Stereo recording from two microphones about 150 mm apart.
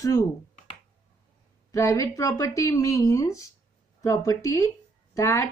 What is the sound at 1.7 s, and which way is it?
Speech, 20° left (ahead or behind).